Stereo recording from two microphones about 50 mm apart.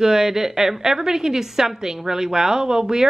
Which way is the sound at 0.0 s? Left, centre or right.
Centre.